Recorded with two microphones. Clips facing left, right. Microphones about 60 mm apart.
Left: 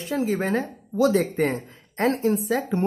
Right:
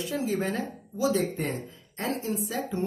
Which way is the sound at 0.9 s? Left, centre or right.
Left.